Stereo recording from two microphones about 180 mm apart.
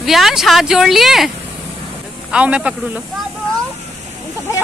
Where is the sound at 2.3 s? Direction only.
5° right (ahead or behind).